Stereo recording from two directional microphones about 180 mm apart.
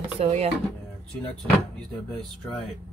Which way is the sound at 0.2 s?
35° right (ahead or behind).